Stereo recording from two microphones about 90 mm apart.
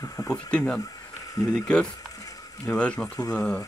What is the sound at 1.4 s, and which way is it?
Speech, 40° left (ahead or behind).